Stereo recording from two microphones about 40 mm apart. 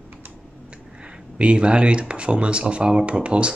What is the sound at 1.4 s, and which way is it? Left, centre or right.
Speech, right.